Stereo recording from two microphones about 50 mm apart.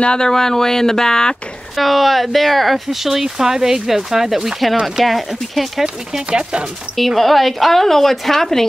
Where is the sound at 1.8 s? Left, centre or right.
Centre.